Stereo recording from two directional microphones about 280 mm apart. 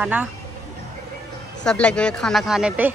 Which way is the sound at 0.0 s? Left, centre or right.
Centre.